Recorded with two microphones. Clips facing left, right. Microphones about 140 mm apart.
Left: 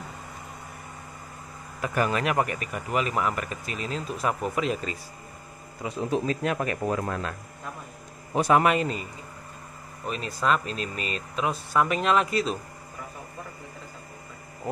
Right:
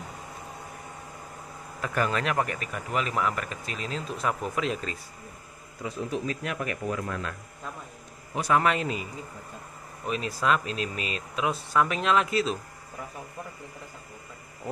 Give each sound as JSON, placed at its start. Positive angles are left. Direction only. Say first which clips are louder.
{"t": 1.8, "sound": "a man's voice", "louder": "left 2 dB", "side_deg": 10}
{"t": 5.9, "sound": "a man's voice", "louder": "left 5 dB", "side_deg": 30}
{"t": 8.6, "sound": "a man's voice", "louder": "left 3 dB", "side_deg": 0}
{"t": 10.0, "sound": "a man's voice", "louder": "even", "side_deg": 0}